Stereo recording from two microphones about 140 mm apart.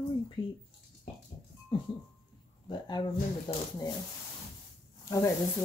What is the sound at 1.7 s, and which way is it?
Speech, 40° left (ahead or behind).